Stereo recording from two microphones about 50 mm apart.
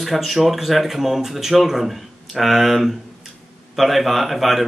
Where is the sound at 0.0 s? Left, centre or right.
Centre.